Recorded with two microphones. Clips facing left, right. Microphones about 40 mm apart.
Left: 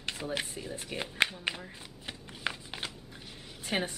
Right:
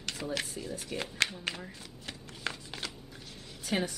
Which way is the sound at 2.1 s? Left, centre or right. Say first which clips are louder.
Left 2 dB; centre.